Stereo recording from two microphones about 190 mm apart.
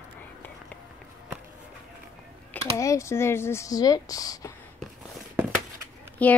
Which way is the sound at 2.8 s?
15° left (ahead or behind).